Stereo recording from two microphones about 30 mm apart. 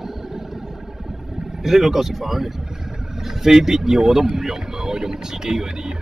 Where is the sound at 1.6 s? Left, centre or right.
Centre.